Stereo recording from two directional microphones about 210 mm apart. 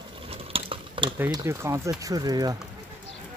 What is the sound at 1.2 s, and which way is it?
Speech, 15° right (ahead or behind).